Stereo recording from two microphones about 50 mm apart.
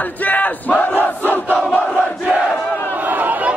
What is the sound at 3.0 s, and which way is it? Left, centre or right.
Chatter, right.